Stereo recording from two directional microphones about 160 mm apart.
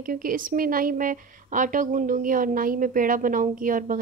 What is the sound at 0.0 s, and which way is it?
Speech, 60° right (ahead or behind).